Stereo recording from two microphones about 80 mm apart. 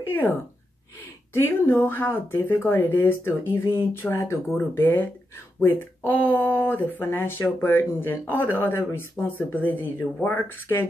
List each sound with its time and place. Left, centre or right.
0.0 s speech: left
4.7 s speech: left